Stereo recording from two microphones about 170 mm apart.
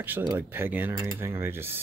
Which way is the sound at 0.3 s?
15° right (ahead or behind).